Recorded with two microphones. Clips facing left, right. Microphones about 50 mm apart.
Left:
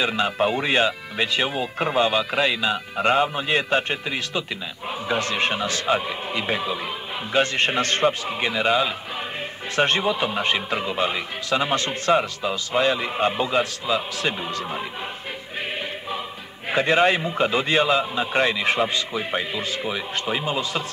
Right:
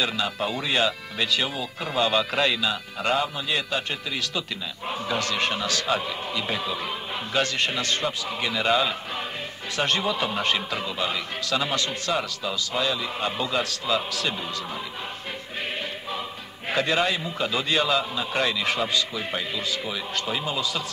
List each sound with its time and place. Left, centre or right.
0.0 s a man's voice: left
2.1 s a man's voice: centre
2.6 s a man's voice: left
7.3 s a man's voice: left
8.3 s a man's voice: left; by 9.2 s centre
9.8 s a man's voice: left
10.0 s a man's voice: centre
16.7 s a man's voice: left